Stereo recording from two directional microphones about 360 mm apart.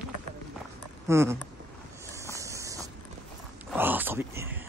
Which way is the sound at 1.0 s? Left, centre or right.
Centre.